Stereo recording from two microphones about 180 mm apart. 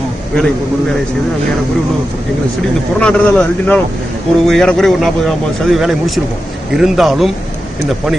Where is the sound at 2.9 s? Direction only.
5° left (ahead or behind).